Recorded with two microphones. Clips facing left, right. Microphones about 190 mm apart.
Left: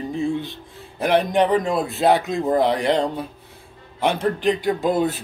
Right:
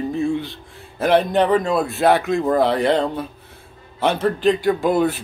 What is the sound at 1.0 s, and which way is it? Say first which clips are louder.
Speech: right 2 dB; 15° left (ahead or behind).